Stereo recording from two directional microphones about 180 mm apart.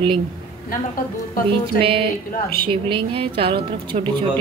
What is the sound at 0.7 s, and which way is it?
Speech, 50° left (ahead or behind).